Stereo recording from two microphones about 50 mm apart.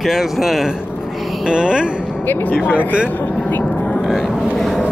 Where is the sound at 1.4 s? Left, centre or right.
Centre.